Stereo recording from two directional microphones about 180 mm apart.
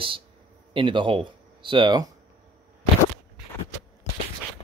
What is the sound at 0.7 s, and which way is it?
Speech, 30° right (ahead or behind).